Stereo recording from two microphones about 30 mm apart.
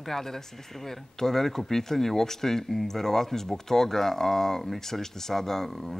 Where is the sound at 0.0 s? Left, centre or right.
Centre.